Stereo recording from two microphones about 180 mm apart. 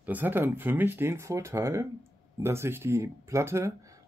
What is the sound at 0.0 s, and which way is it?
Speech, 10° right (ahead or behind).